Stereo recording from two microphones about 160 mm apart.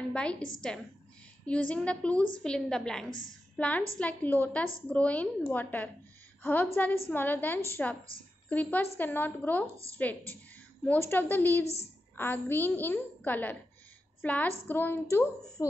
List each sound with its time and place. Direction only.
0.1 s a woman's voice: 5° left (ahead or behind)
11.6 s a woman's voice: 40° left (ahead or behind)
12.2 s a woman's voice: 15° left (ahead or behind)